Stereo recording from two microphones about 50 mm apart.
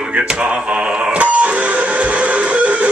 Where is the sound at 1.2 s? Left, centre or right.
Right.